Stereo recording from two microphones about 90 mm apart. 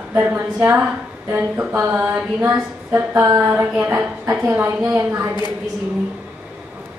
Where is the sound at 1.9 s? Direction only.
15° right (ahead or behind).